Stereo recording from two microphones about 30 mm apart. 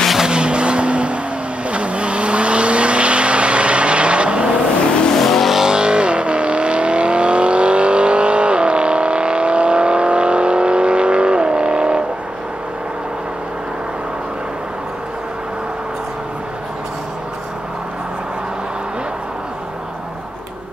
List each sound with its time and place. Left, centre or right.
0.3 s vehicle: right
5.1 s vehicle: centre
5.6 s vehicle: right